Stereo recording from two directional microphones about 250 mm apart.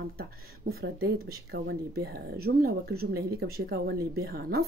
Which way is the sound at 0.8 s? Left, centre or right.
Right.